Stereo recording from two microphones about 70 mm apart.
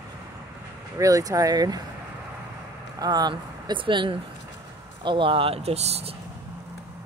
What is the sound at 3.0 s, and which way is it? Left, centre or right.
Speech, right.